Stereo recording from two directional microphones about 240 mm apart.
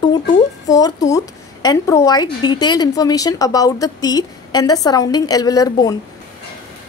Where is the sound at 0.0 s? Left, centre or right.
Centre.